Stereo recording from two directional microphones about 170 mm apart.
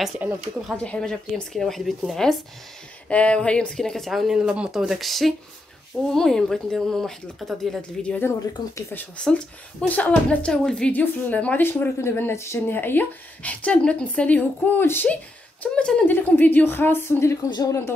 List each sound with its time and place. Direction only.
0.0 s speech: 10° right (ahead or behind)
0.6 s a woman's voice: 5° left (ahead or behind)